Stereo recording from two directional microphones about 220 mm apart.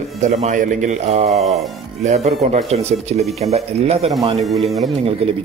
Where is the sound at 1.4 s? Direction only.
Centre (ahead or behind).